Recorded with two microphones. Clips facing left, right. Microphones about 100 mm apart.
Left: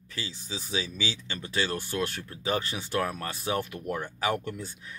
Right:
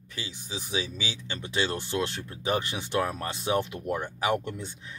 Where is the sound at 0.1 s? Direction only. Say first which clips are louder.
Even; 15° right (ahead or behind).